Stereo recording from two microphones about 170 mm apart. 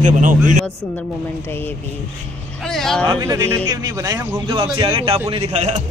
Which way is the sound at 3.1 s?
15° right (ahead or behind).